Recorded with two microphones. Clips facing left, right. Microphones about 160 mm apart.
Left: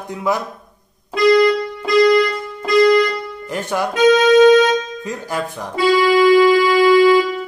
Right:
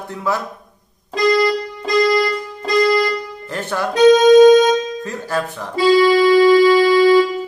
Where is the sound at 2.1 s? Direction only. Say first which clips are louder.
Left 2 dB; 40° right (ahead or behind).